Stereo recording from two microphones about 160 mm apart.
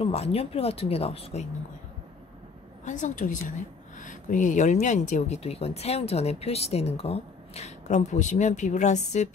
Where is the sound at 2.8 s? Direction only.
50° left (ahead or behind).